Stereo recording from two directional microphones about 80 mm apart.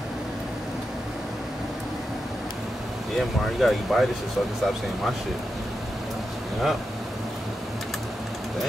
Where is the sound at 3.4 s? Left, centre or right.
Centre.